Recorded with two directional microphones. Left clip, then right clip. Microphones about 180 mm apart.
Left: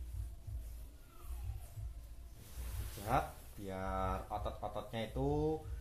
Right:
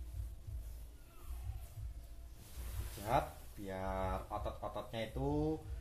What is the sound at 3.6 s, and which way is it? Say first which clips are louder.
Speech: left 1 dB; 25° left (ahead or behind).